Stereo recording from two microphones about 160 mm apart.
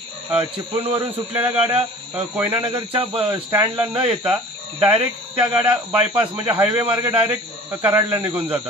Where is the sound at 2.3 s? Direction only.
10° right (ahead or behind).